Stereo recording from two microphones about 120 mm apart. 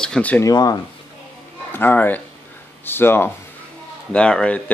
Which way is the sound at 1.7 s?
15° left (ahead or behind).